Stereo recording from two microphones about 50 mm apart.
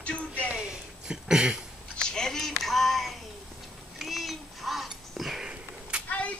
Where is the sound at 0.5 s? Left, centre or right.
Centre.